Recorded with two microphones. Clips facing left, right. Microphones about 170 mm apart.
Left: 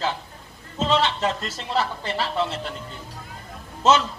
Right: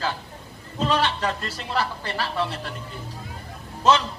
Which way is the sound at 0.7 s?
25° left (ahead or behind).